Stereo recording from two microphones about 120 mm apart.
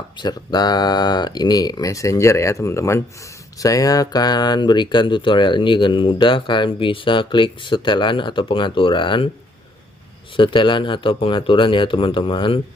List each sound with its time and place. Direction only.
0.2 s speech: 35° left (ahead or behind)
10.3 s speech: 45° left (ahead or behind)